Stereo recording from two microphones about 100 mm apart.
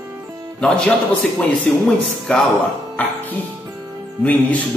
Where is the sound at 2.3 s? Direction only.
10° left (ahead or behind).